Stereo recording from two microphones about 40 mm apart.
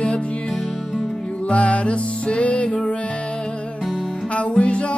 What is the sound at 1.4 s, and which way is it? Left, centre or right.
Music, left.